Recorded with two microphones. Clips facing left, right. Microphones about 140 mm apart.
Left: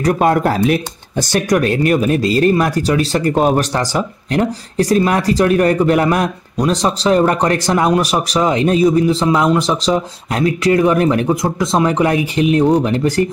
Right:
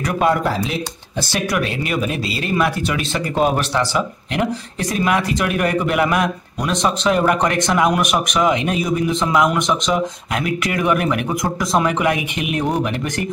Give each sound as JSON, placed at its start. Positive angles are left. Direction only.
{"t": 0.0, "sound": "speech", "side_deg": 50}
{"t": 1.3, "sound": "speech", "side_deg": 45}